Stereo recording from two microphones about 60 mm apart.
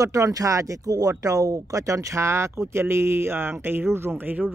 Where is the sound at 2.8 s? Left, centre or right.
Right.